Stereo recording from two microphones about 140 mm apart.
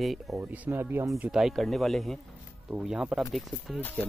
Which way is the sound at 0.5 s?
15° right (ahead or behind).